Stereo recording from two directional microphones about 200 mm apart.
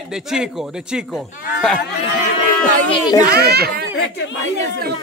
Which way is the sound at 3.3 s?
55° right (ahead or behind).